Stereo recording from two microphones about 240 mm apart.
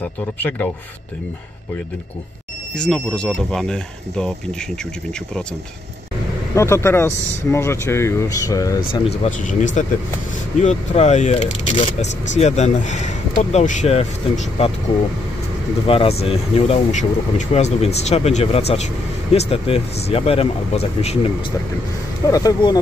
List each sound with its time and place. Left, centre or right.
0.0 s speech: centre
2.7 s speech: centre
6.5 s speech: centre
9.2 s speech: left
15.9 s speech: left